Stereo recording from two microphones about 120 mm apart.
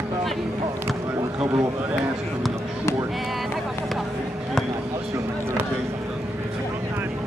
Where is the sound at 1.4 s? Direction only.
25° right (ahead or behind).